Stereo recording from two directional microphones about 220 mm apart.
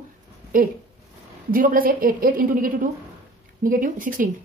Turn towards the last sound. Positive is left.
turn(degrees=-35)  # may be behind; listen again after turning